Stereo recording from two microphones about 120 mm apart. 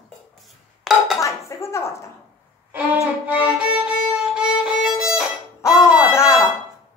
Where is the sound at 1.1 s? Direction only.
25° left (ahead or behind).